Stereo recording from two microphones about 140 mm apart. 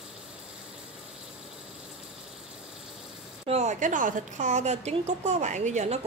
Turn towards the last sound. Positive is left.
turn(degrees=-60)  # may be behind; listen again after turning